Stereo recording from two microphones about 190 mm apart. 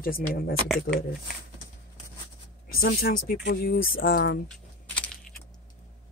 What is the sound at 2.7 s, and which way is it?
Speech, 50° left (ahead or behind).